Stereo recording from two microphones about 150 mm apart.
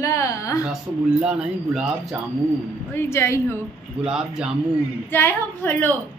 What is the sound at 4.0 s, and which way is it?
Speech, 5° right (ahead or behind).